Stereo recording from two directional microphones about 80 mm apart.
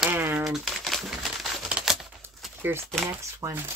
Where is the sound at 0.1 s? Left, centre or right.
Right.